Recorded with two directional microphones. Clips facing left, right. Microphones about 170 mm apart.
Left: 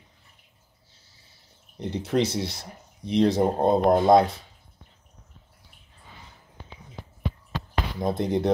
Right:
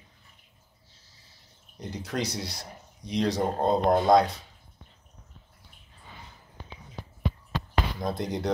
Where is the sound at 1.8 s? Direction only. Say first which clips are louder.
Left 7 dB; 25° left (ahead or behind).